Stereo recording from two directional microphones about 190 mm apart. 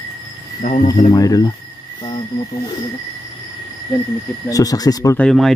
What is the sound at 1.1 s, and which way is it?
Speech, 20° left (ahead or behind).